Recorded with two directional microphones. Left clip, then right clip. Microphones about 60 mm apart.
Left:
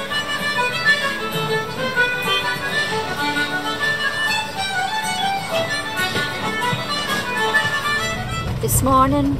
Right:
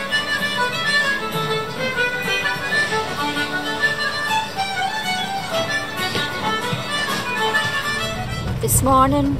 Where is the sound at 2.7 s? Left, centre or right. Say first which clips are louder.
Right 1 dB; right.